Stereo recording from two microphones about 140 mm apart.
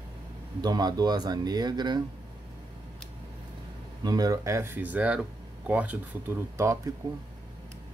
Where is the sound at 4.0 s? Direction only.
30° right (ahead or behind).